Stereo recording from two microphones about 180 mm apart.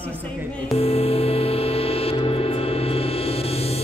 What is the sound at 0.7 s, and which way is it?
Music, 35° left (ahead or behind).